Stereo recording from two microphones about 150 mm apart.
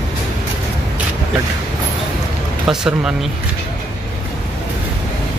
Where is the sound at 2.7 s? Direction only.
5° right (ahead or behind).